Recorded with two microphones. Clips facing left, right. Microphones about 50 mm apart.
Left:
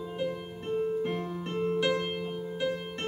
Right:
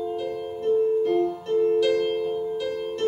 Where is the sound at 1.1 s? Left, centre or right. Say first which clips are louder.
Right 11 dB; left.